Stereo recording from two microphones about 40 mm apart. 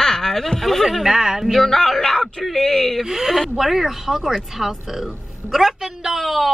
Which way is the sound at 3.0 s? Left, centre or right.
Centre.